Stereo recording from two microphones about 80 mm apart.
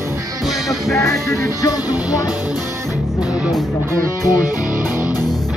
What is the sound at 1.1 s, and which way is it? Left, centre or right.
Music, left.